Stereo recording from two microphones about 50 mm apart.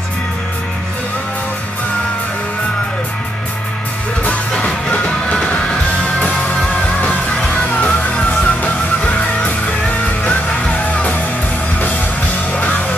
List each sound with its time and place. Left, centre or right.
4.6 s music: left
12.5 s music: left